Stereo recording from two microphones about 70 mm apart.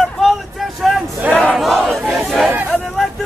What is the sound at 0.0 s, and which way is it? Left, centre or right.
Vehicle, centre.